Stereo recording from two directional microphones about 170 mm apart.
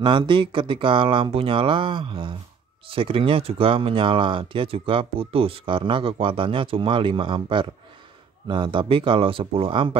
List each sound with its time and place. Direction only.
0.0 s speech: 30° right (ahead or behind)